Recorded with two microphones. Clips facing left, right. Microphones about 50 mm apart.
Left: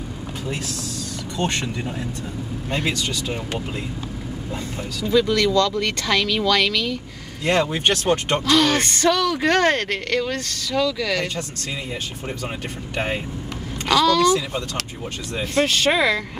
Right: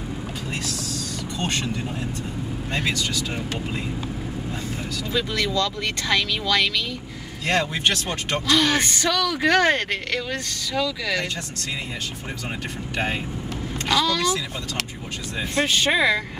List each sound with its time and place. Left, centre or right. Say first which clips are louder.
1.4 s speech: left 3 dB; left
5.1 s speech: left 7 dB; centre
7.7 s speech: left 4 dB; left
8.5 s speech: left 1 dB; centre
12.9 s speech: left 1 dB; centre
13.8 s speech: left 5 dB; centre
15.5 s speech: left 2 dB; centre